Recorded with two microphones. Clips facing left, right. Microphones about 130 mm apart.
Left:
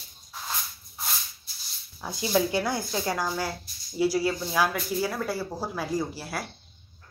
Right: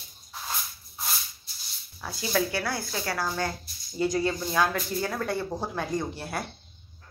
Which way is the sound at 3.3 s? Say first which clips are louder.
Even; 10° left (ahead or behind).